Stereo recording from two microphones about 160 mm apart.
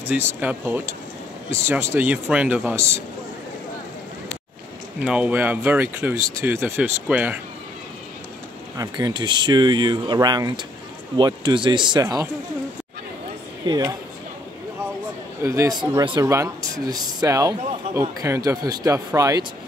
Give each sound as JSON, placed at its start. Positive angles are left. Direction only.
{"t": 0.0, "sound": "speech", "side_deg": -15}
{"t": 5.0, "sound": "speech", "side_deg": -5}
{"t": 8.7, "sound": "speech", "side_deg": -20}
{"t": 13.7, "sound": "speech", "side_deg": -25}
{"t": 15.4, "sound": "speech", "side_deg": -20}